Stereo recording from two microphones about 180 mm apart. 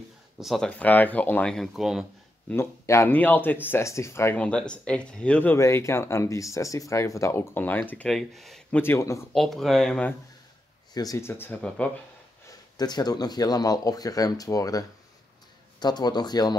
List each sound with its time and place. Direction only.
0.4 s speech: centre (ahead or behind)
2.5 s speech: 15° left (ahead or behind)
9.3 s speech: centre (ahead or behind)
10.9 s speech: 20° left (ahead or behind)
12.4 s speech: 20° left (ahead or behind)